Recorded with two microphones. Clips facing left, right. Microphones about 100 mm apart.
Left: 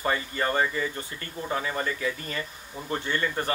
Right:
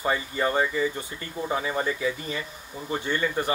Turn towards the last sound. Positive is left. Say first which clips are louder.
# right 2 dB
turn(degrees=-15)  # may be behind; listen again after turning